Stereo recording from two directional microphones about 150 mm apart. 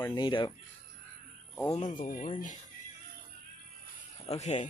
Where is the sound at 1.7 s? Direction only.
55° left (ahead or behind).